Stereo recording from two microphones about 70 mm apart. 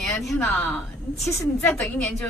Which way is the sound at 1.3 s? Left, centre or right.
Left.